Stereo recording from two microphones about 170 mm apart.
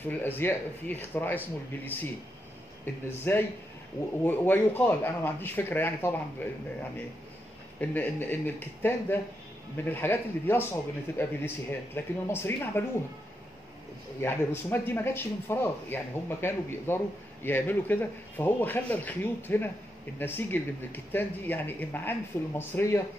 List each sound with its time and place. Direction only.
0.2 s speech: 15° left (ahead or behind)
7.8 s speech: 10° left (ahead or behind)
14.2 s speech: 15° left (ahead or behind)